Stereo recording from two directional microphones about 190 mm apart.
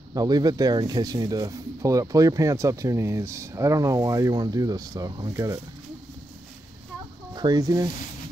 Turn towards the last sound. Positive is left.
turn(degrees=-20)  # may be behind; listen again after turning